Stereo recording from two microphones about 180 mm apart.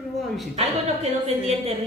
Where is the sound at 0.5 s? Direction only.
35° right (ahead or behind).